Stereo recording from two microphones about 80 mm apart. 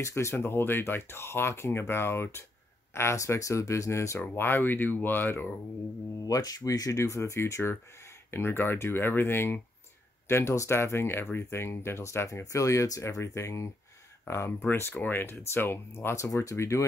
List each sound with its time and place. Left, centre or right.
0.0 s speech: left
4.2 s speech: left
6.2 s speech: left